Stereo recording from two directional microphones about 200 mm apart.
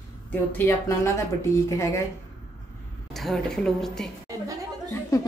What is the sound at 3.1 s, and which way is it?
Speech, centre (ahead or behind).